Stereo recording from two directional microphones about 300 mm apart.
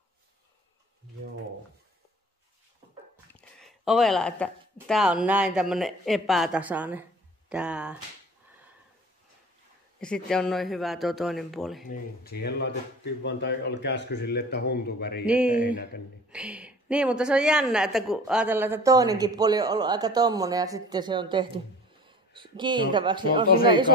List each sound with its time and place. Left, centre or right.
3.3 s a sound: centre
4.8 s speech: centre
9.9 s speech: centre
11.9 s speech: left
15.2 s speech: centre
15.6 s speech: left
16.3 s a woman's voice: centre